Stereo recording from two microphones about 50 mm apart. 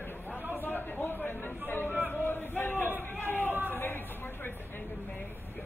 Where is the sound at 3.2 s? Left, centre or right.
Left.